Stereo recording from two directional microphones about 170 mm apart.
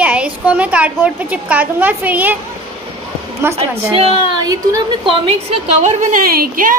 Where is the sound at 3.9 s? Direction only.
30° right (ahead or behind).